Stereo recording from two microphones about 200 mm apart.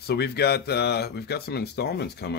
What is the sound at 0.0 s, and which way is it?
Speech, 55° left (ahead or behind).